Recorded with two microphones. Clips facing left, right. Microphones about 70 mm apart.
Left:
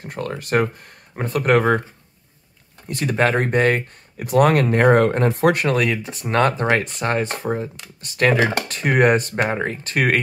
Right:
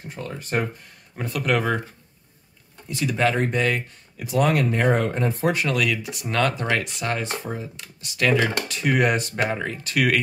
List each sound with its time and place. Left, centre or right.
0.0 s speech: left
1.1 s speech: left
2.9 s speech: left
5.7 s speech: left